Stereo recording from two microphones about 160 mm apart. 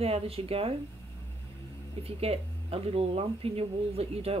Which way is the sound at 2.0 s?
40° right (ahead or behind).